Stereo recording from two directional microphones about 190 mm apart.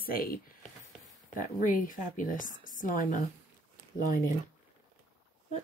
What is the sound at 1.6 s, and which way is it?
Speech, 45° left (ahead or behind).